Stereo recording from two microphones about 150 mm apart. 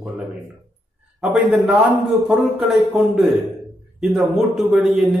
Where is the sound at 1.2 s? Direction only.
Centre (ahead or behind).